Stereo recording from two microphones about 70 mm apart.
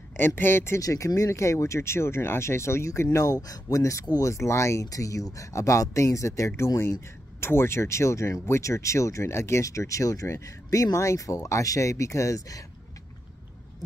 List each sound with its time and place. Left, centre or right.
0.4 s speech: left
0.7 s speech: left